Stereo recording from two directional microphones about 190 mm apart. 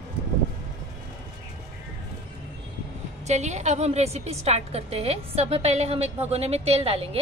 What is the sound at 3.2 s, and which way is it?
A woman's voice, 35° right (ahead or behind).